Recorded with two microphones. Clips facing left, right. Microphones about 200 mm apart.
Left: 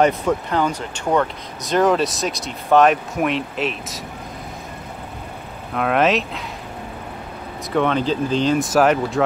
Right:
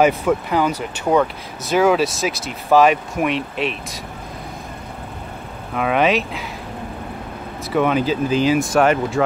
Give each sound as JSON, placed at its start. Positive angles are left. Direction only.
{"t": 0.0, "sound": "speech", "side_deg": -5}
{"t": 5.8, "sound": "speech", "side_deg": 0}
{"t": 7.7, "sound": "speech", "side_deg": -10}